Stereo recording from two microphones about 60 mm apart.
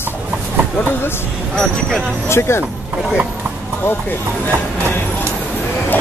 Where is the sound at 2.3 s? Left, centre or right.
Left.